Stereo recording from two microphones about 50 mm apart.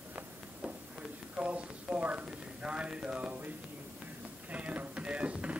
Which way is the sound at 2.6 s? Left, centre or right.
Centre.